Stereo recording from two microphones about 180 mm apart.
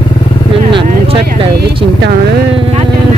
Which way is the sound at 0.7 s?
30° right (ahead or behind).